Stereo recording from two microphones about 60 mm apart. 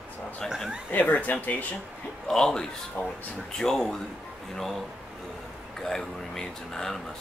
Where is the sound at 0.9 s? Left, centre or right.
Left.